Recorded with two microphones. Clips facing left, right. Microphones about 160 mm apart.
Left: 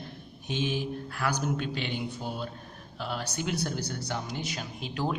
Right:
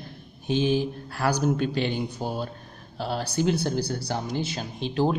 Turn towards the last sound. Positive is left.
turn(degrees=-30)  # may be behind; listen again after turning